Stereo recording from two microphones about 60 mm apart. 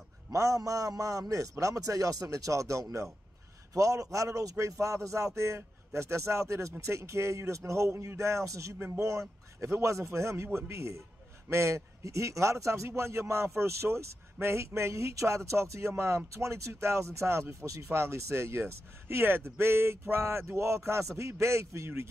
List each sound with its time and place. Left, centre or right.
0.3 s a man's voice: right
8.7 s speech: right
9.6 s speech: right